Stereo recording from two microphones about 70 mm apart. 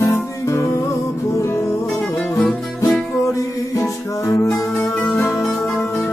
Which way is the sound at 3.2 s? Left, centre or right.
Left.